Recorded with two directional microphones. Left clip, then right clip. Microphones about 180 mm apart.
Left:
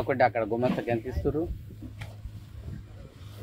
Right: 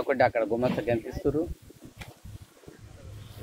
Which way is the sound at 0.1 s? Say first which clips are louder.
Right 1 dB; 85° right.